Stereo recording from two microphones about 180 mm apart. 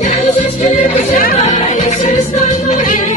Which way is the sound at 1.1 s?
45° left (ahead or behind).